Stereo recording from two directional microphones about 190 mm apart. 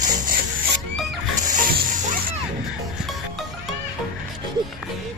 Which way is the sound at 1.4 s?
50° right (ahead or behind).